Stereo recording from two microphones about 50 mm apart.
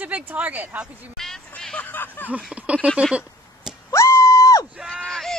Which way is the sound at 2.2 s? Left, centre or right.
Right.